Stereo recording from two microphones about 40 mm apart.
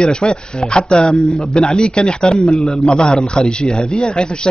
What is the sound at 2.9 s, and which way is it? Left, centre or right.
A man's voice, left.